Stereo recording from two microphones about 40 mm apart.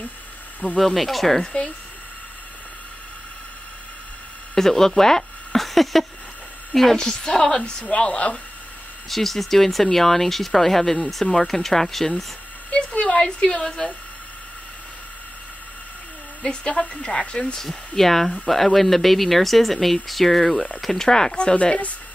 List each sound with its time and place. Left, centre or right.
0.7 s speech: centre
1.4 s speech: centre
4.6 s a woman's voice: centre
7.0 s a woman's voice: centre
9.1 s a woman's voice: centre
13.0 s a woman's voice: left
16.4 s speech: left
17.6 s a woman's voice: centre
20.5 s speech: left
20.8 s speech: centre
21.1 s speech: centre